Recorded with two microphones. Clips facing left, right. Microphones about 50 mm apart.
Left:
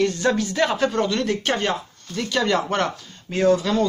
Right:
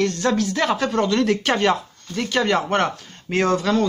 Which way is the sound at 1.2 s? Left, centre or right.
Right.